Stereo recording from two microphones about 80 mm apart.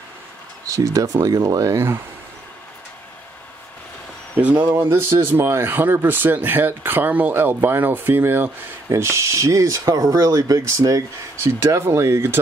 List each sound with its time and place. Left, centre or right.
0.7 s speech: right
4.7 s speech: right
11.3 s speech: right